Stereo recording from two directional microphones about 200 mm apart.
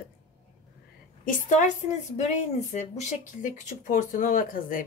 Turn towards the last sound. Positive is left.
turn(degrees=45)  # may be behind; listen again after turning